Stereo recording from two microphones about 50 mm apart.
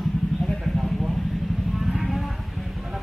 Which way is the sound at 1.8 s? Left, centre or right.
Centre.